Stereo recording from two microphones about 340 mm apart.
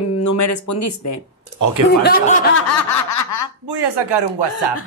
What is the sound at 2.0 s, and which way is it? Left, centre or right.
Speech, left.